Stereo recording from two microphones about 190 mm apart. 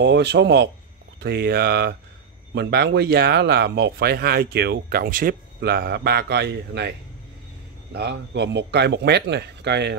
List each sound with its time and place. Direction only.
0.0 s speech: 65° right (ahead or behind)
7.9 s speech: 60° right (ahead or behind)